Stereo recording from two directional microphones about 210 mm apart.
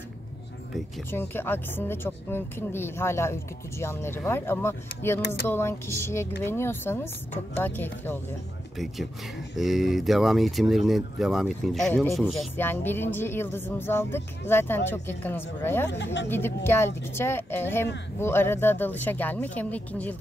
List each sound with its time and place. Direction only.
1.1 s speech: 10° left (ahead or behind)
15.9 s speech: 55° left (ahead or behind)
16.3 s speech: 10° left (ahead or behind)